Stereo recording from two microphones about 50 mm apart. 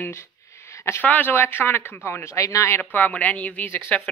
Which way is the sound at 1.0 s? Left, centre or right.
Left.